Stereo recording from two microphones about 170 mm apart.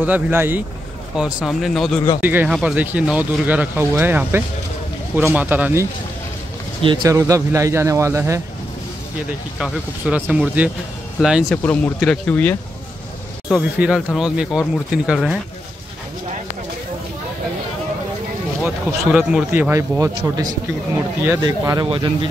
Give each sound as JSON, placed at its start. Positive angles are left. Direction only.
{"t": 0.0, "sound": "speech", "side_deg": -10}
{"t": 6.8, "sound": "speech", "side_deg": -25}
{"t": 9.6, "sound": "speech", "side_deg": -5}
{"t": 11.5, "sound": "speech", "side_deg": 10}
{"t": 13.5, "sound": "speech", "side_deg": -5}
{"t": 18.6, "sound": "speech", "side_deg": -10}
{"t": 21.2, "sound": "speech", "side_deg": -20}